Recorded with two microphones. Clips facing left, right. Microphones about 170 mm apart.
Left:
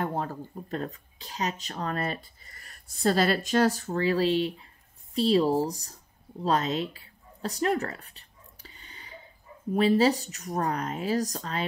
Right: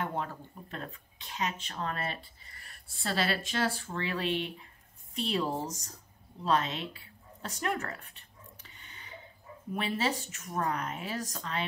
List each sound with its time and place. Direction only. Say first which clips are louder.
0.0 s speech: left 4 dB; 40° left (ahead or behind)
6.4 s a sound: left 4 dB; 40° left (ahead or behind)
9.8 s speech: left 10 dB; 35° left (ahead or behind)